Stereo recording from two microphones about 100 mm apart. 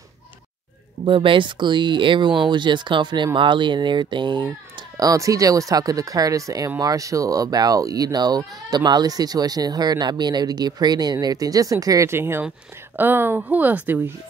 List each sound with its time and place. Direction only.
1.0 s speech: 60° right (ahead or behind); by 14.1 s 15° right (ahead or behind)